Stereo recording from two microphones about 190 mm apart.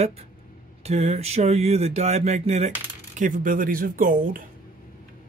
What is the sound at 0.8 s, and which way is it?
Speech, 35° right (ahead or behind).